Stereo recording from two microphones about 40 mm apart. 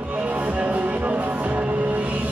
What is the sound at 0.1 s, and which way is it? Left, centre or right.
Music, right.